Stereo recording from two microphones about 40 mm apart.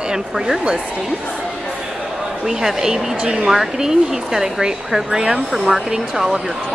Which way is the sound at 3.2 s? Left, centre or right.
Right.